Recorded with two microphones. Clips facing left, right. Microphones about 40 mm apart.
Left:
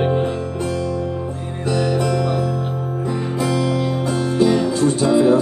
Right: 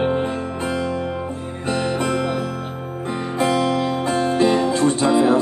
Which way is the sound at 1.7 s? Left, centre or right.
Right.